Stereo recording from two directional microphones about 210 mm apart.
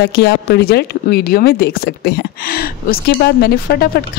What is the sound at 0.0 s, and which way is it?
A woman's voice, 50° left (ahead or behind).